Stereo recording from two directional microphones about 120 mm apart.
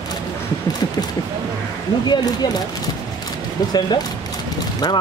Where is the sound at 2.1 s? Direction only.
35° left (ahead or behind).